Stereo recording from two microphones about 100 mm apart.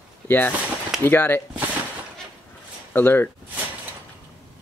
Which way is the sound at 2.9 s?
20° left (ahead or behind).